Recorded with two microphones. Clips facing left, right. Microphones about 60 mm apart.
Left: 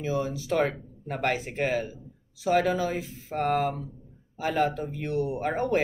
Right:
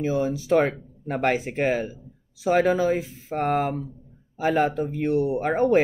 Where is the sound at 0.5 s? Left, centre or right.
Right.